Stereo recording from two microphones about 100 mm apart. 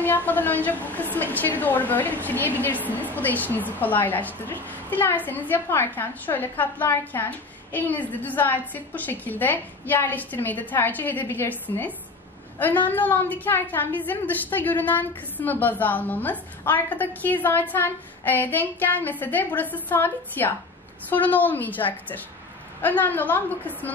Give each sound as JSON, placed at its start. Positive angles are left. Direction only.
{"t": 0.0, "sound": "a woman's voice", "side_deg": 20}